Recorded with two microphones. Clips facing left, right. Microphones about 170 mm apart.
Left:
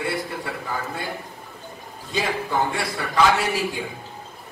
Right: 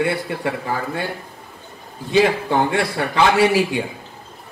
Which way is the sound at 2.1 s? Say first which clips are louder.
Right 8 dB; 70° right (ahead or behind).